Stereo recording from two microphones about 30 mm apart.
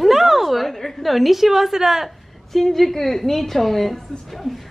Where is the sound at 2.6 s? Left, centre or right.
Centre.